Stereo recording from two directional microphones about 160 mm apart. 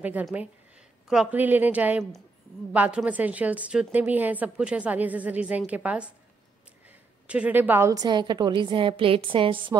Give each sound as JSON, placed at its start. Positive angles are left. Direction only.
{"t": 0.0, "sound": "a woman's voice", "side_deg": -10}
{"t": 7.2, "sound": "a woman's voice", "side_deg": -10}